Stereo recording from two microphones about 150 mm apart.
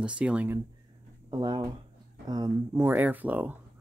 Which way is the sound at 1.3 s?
30° right (ahead or behind).